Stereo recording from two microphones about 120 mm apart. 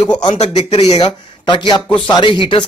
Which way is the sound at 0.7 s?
60° left (ahead or behind).